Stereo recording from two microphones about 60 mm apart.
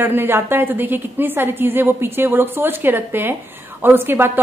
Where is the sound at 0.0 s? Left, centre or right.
Right.